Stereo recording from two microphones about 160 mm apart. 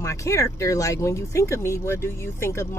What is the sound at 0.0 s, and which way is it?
Speech, 20° left (ahead or behind).